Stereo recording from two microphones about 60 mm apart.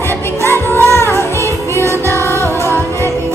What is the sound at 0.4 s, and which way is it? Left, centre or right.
Music, left.